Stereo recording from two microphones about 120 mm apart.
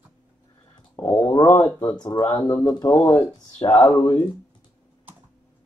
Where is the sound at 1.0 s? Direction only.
15° left (ahead or behind).